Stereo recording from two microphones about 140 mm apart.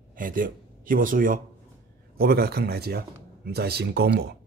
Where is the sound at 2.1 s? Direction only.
90° right.